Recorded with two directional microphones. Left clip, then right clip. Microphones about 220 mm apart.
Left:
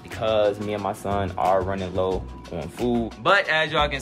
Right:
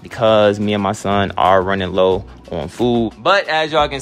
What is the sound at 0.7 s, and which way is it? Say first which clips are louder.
Speech: right 8 dB; 45° right (ahead or behind).